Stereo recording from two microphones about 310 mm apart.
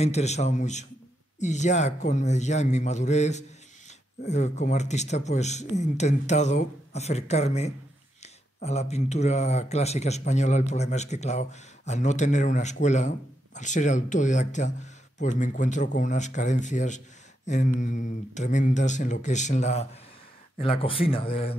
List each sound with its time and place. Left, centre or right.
0.0 s speech: left